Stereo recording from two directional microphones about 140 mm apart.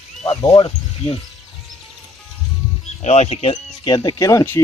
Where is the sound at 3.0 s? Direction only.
50° left (ahead or behind).